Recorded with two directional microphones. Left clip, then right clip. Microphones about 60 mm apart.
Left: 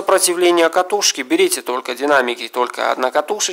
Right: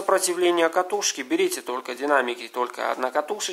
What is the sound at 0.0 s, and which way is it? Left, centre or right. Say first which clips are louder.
Speech: left 7 dB; left.